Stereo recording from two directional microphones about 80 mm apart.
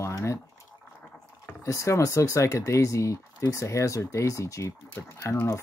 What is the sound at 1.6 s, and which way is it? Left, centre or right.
Speech, left.